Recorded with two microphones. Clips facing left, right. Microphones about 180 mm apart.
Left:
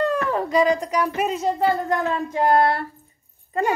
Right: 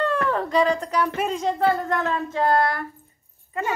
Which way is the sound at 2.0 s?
10° left (ahead or behind).